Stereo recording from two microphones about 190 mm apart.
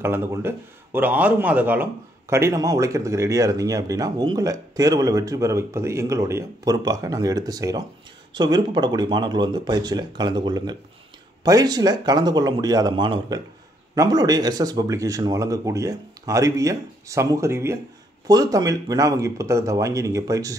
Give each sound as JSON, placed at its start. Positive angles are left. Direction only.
{"t": 0.0, "sound": "speech", "side_deg": -10}